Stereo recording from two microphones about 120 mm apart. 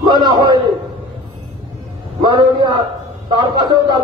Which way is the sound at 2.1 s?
35° right (ahead or behind).